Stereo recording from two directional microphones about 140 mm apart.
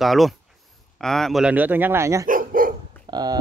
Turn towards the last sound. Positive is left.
turn(degrees=-30)  # may be behind; listen again after turning